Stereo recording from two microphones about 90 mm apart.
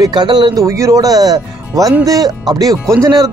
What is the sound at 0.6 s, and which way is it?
Speech, 35° right (ahead or behind).